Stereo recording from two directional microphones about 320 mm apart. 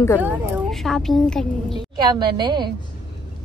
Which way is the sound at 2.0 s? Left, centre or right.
Centre.